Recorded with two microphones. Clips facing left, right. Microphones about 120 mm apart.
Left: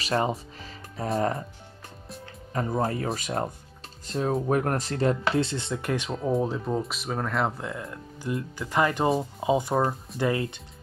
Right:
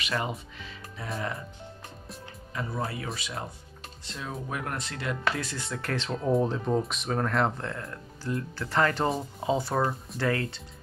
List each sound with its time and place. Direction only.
0.0 s speech: 35° left (ahead or behind)
2.5 s speech: 45° left (ahead or behind); by 10.6 s 20° left (ahead or behind)